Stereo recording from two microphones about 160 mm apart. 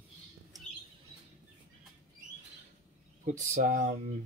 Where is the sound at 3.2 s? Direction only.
50° right (ahead or behind).